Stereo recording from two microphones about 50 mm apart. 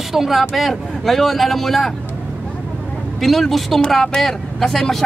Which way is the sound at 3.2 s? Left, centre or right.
Centre.